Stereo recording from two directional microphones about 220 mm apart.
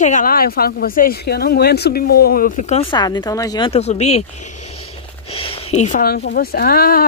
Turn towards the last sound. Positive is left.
turn(degrees=40)  # may be behind; listen again after turning